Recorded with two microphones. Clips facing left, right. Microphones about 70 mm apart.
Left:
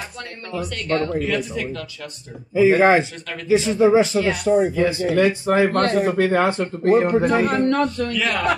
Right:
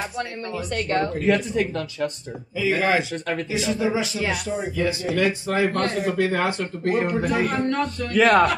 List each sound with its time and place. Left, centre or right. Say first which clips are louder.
0.6 s speech: left 1 dB; right
2.5 s speech: left 7 dB; left
5.7 s speech: left 5 dB; left
6.2 s speech: left 5 dB; left
7.2 s speech: left 4 dB; left
8.1 s speech: right 7 dB; right